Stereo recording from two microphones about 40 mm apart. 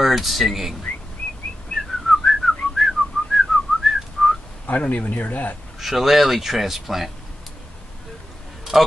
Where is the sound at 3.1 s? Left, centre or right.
Left.